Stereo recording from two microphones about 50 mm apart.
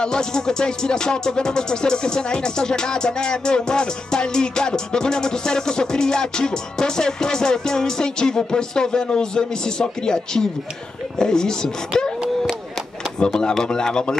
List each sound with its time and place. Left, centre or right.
0.0 s music: centre
13.2 s music: centre